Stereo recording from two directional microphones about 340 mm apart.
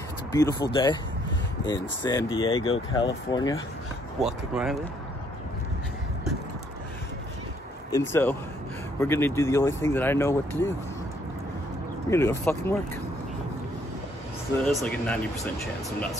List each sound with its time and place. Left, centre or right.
0.3 s speech: centre
4.2 s speech: centre
7.9 s speech: centre
12.1 s speech: centre
14.6 s speech: centre